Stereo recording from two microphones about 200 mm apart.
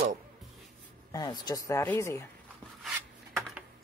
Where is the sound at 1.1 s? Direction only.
20° left (ahead or behind).